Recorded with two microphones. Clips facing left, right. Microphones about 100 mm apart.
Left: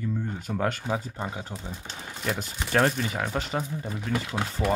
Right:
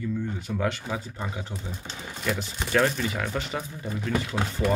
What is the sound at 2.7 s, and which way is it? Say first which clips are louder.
Speech: even; 35° left (ahead or behind).